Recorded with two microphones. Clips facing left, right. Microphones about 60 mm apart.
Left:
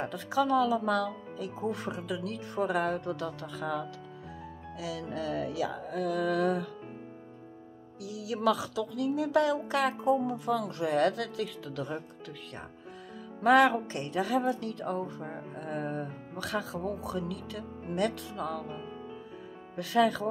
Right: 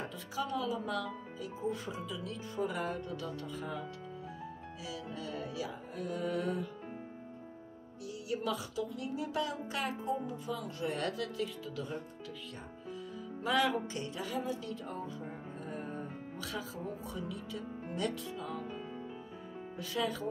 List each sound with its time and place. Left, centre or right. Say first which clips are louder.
0.0 s speech: left 9 dB; left
8.0 s speech: left 7 dB; left
19.7 s speech: left 10 dB; left